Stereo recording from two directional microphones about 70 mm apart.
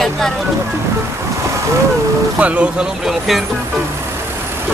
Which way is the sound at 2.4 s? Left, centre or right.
Centre.